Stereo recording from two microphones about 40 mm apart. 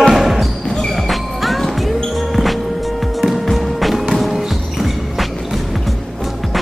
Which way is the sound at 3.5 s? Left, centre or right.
Centre.